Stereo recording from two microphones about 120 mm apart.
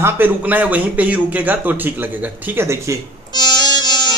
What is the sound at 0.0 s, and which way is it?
A man's voice, 15° right (ahead or behind).